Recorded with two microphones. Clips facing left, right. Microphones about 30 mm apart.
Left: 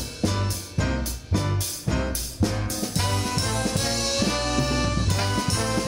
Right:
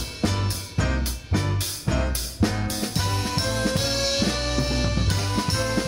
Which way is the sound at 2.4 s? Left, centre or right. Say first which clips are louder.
Right 2 dB; right.